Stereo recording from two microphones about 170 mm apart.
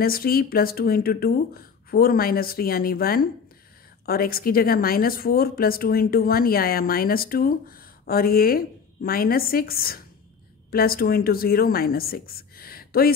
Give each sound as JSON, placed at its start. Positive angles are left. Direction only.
{"t": 0.0, "sound": "speech", "side_deg": 60}